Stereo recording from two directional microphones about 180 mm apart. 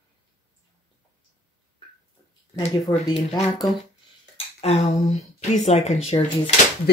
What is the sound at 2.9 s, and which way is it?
Speech, 20° left (ahead or behind).